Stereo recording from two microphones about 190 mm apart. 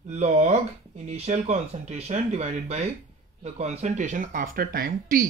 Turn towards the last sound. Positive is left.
turn(degrees=-50)  # may be behind; listen again after turning